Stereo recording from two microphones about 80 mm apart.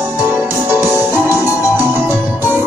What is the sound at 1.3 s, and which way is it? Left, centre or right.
Music, left.